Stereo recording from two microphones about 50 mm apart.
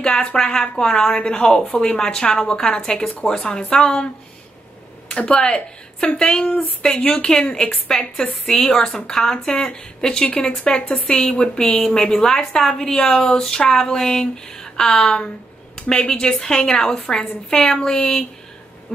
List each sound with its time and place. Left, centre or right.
0.0 s a woman's voice: centre
5.1 s a woman's voice: centre